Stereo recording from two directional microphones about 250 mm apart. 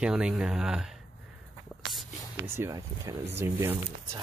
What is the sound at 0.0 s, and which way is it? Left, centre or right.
Speech, centre.